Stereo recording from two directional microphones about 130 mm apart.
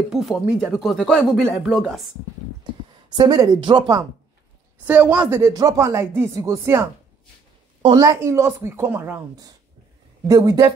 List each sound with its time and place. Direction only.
0.1 s speech: centre (ahead or behind)
3.2 s speech: 35° right (ahead or behind)
4.8 s a woman's voice: 15° right (ahead or behind)
5.5 s speech: 30° right (ahead or behind); by 9.2 s 15° right (ahead or behind)
10.2 s speech: 30° right (ahead or behind)